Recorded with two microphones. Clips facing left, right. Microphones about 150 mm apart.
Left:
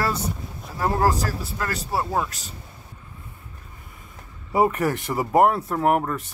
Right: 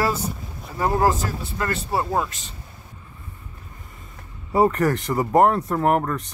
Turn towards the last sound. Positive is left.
turn(degrees=5)  # may be behind; listen again after turning